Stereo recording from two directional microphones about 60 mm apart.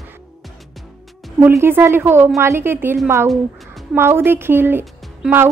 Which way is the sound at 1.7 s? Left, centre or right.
Right.